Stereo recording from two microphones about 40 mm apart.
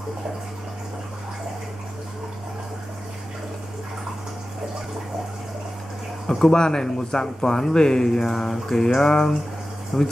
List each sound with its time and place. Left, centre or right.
6.2 s speech: centre
6.5 s speech: centre